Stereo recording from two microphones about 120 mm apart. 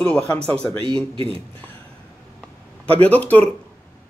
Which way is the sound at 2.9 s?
15° left (ahead or behind).